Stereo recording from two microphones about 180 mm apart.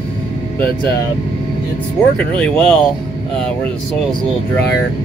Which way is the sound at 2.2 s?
5° left (ahead or behind).